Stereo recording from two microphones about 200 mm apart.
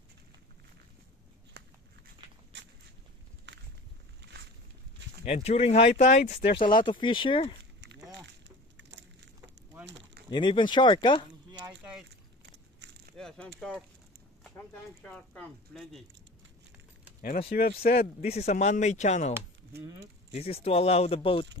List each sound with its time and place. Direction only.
1.6 s a sound: 60° right (ahead or behind)
3.5 s walk: 60° right (ahead or behind)
5.2 s speech: 30° left (ahead or behind)
8.5 s splinter: 60° right (ahead or behind)
9.8 s a sound: 60° right (ahead or behind)
10.3 s speech: 25° left (ahead or behind)
13.1 s speech: centre (ahead or behind)
15.0 s speech: 5° left (ahead or behind)
17.5 s speech: 45° left (ahead or behind)
17.9 s speech: 30° left (ahead or behind)
20.3 s speech: 30° left (ahead or behind)